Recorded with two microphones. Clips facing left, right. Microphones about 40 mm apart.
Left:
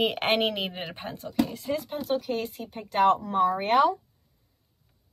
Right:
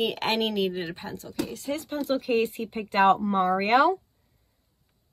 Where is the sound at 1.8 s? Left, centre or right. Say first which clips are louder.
Right 2 dB; centre.